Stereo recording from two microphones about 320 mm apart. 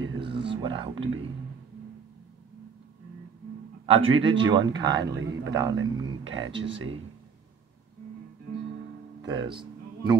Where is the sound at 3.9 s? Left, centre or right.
Centre.